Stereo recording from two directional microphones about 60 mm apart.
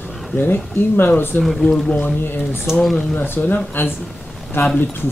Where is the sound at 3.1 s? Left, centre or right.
Left.